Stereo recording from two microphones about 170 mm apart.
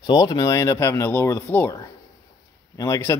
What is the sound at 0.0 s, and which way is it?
Speech, 25° left (ahead or behind).